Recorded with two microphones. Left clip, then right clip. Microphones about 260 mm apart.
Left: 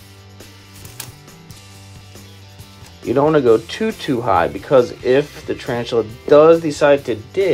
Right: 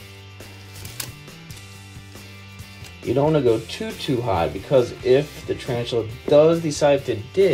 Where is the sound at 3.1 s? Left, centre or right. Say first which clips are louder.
Left 6 dB; left.